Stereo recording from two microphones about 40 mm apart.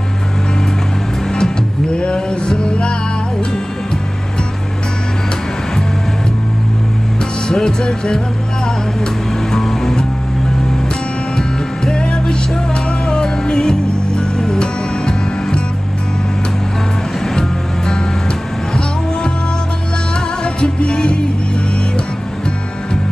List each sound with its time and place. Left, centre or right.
1.3 s music: left
7.4 s music: left
9.5 s music: centre
11.3 s music: centre
17.3 s music: centre
20.4 s music: left